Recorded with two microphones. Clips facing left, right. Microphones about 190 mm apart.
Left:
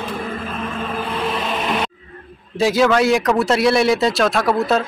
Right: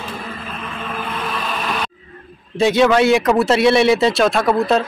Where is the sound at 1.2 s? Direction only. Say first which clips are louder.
Left 3 dB; 20° left (ahead or behind).